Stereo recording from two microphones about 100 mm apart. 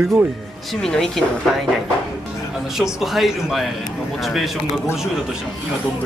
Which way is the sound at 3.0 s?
Centre (ahead or behind).